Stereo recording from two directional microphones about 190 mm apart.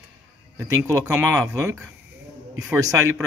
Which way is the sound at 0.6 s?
15° right (ahead or behind).